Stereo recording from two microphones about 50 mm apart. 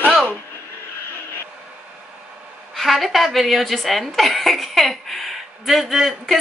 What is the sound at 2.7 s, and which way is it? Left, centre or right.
A woman's voice, centre.